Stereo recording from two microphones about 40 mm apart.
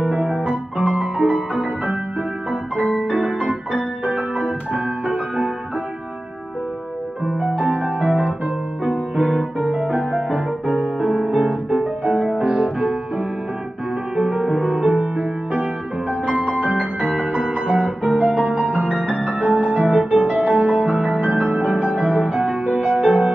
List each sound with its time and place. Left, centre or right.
0.0 s piano: centre
0.4 s music: right
7.2 s music: centre
7.6 s music: right
9.8 s music: right
14.2 s music: centre
14.9 s music: right